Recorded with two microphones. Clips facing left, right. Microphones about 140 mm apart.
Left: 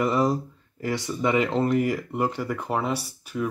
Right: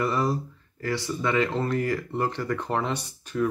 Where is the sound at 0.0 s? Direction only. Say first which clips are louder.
Left 3 dB; 15° left (ahead or behind).